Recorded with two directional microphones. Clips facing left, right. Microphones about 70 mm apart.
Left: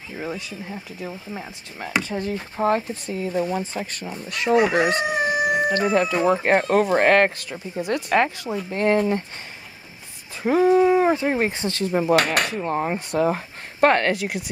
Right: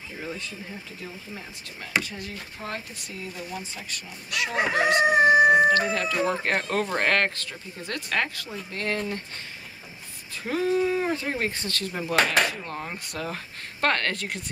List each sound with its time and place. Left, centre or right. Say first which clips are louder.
0.7 s speech: left 6 dB; left
5.0 s crowing: right 4 dB; right
5.7 s speech: left 3 dB; left
10.4 s speech: left 8 dB; left
12.2 s speech: left 1 dB; left
12.6 s speech: left 11 dB; left; by 14.4 s centre